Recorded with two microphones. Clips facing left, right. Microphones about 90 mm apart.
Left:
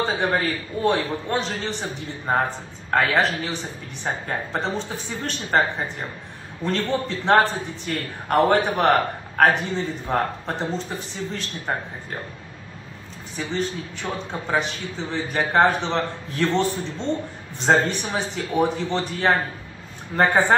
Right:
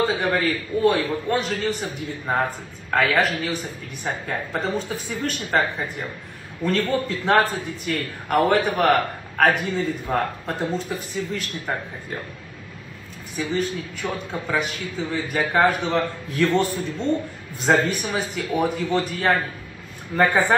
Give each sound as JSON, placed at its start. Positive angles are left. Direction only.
{"t": 0.0, "sound": "a man's voice", "side_deg": 30}
{"t": 13.4, "sound": "a man's voice", "side_deg": 30}